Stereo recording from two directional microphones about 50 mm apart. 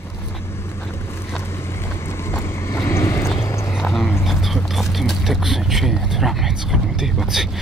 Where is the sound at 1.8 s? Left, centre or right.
Left.